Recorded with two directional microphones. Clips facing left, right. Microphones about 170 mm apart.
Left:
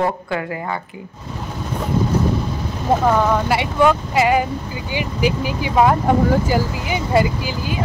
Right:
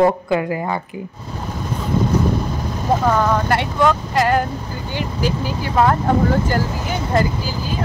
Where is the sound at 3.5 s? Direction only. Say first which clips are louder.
Left 1 dB; 10° left (ahead or behind).